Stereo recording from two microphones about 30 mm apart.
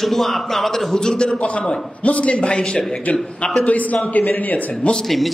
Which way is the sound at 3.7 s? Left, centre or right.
Left.